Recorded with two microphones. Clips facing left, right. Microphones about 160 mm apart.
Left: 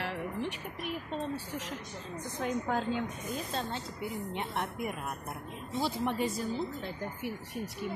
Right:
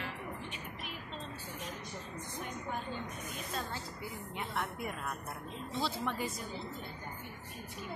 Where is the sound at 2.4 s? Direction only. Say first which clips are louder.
Left 10 dB; 90° left.